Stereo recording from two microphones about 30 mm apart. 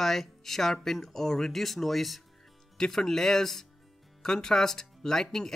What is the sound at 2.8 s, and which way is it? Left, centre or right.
Speech, centre.